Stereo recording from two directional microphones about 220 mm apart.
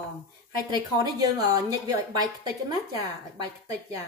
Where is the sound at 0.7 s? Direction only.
20° right (ahead or behind).